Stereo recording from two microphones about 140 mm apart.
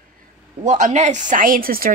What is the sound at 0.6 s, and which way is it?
A woman's voice, 60° right (ahead or behind).